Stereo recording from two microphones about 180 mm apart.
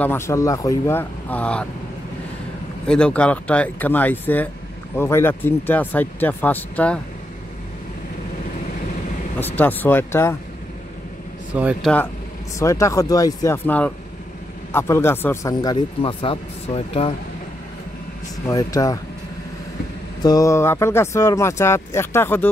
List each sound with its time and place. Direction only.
0.0 s speech: 15° left (ahead or behind)
2.9 s speech: 5° left (ahead or behind)
9.6 s speech: 10° left (ahead or behind)
11.5 s speech: 10° right (ahead or behind)
12.5 s speech: 15° left (ahead or behind); by 17.1 s 35° left (ahead or behind)
18.5 s speech: 20° left (ahead or behind)
20.2 s speech: 20° left (ahead or behind)